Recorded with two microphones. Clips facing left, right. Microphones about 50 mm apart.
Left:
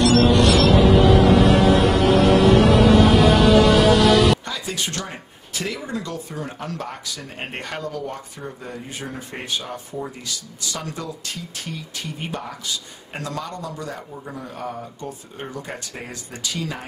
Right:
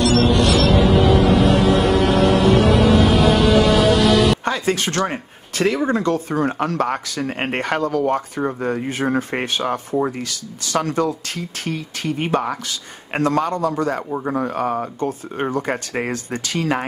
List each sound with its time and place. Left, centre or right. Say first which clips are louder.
0.0 s music: even; centre
4.5 s speech: right 8 dB; right